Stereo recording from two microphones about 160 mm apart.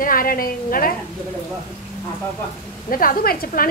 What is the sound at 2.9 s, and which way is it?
Speech, 65° left (ahead or behind).